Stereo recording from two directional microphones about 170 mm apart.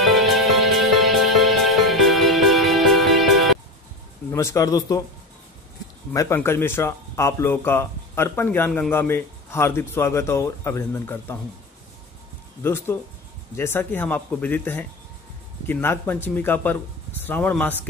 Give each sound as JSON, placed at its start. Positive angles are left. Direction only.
{"t": 0.0, "sound": "music", "side_deg": 0}
{"t": 4.3, "sound": "speech", "side_deg": 15}
{"t": 6.1, "sound": "speech", "side_deg": 15}
{"t": 12.6, "sound": "speech", "side_deg": 15}